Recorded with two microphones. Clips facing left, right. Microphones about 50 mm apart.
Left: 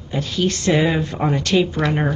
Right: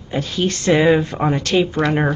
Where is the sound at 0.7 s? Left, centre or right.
Centre.